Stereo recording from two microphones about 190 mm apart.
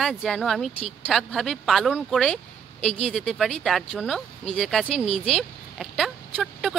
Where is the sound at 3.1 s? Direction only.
Centre (ahead or behind).